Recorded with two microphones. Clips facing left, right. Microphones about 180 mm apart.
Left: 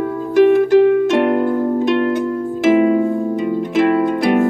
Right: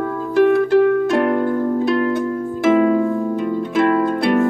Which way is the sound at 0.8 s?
20° left (ahead or behind).